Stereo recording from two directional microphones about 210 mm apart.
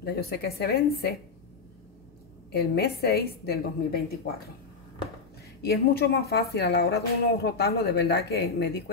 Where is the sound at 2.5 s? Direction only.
50° left (ahead or behind).